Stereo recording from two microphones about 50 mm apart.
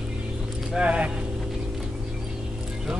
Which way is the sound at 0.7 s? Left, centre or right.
Right.